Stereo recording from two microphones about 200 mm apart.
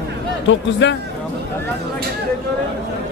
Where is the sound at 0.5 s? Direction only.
65° left (ahead or behind).